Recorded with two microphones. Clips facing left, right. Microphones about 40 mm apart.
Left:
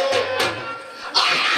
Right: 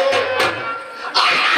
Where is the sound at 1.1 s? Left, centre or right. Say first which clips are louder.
Right 4 dB; right.